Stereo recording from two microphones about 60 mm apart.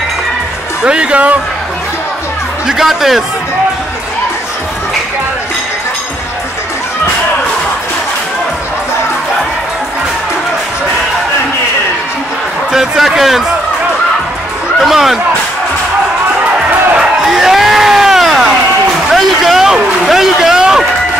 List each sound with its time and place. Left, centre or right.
0.8 s speech: centre
2.7 s a man's voice: centre
12.7 s a man's voice: centre
14.8 s a man's voice: centre
17.3 s vehicle: centre
19.1 s a sound: centre